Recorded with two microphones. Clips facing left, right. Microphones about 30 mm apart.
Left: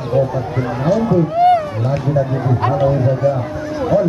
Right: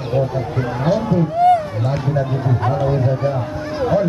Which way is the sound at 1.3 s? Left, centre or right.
Left.